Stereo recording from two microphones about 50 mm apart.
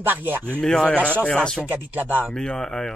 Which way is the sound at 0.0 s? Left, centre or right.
Right.